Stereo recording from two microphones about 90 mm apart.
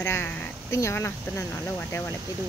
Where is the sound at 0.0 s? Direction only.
25° left (ahead or behind).